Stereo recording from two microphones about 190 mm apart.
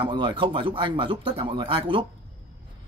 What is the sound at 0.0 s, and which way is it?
Speech, 25° right (ahead or behind).